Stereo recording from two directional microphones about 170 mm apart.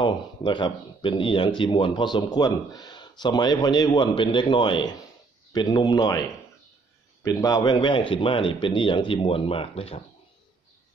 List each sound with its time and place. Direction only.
0.0 s speech: 25° left (ahead or behind)